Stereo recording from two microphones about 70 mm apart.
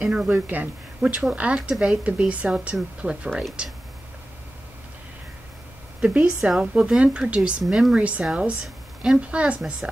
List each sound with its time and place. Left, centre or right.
0.0 s a woman's voice: centre
0.3 s speech: right
5.9 s speech: centre
7.6 s a woman's voice: centre
8.2 s a woman's voice: right